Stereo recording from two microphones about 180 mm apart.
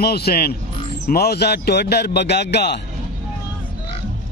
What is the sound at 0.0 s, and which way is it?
Speech, 60° left (ahead or behind).